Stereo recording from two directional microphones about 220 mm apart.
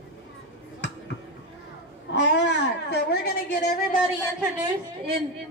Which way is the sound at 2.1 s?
50° left (ahead or behind).